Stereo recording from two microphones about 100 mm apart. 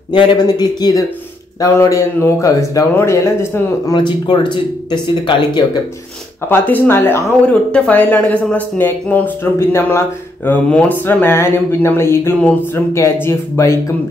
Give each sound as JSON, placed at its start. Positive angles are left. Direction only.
{"t": 0.5, "sound": "speech", "side_deg": 40}
{"t": 1.6, "sound": "speech", "side_deg": 30}
{"t": 3.9, "sound": "speech", "side_deg": 50}
{"t": 6.5, "sound": "speech", "side_deg": 20}
{"t": 7.4, "sound": "speech", "side_deg": 10}